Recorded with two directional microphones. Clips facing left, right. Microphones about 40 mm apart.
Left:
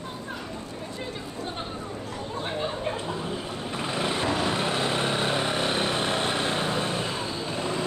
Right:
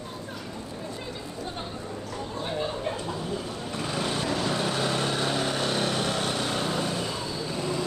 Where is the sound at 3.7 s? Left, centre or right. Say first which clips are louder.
Left 1 dB; left.